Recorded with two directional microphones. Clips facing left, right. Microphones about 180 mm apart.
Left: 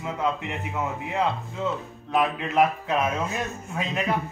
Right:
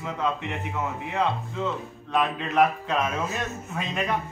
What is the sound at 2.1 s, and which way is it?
Speech, 10° left (ahead or behind).